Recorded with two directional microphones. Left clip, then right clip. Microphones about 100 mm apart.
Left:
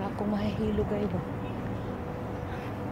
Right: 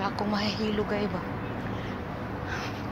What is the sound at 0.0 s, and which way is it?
Vehicle, 35° left (ahead or behind).